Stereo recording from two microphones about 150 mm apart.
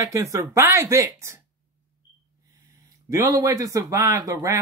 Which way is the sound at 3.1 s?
20° right (ahead or behind).